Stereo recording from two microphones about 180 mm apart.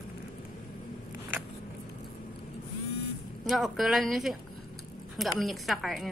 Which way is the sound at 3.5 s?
Centre (ahead or behind).